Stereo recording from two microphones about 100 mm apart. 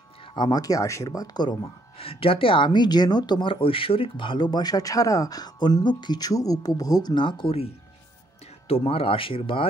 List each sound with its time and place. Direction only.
0.4 s speech: 40° left (ahead or behind)
2.0 s speech: 70° left (ahead or behind)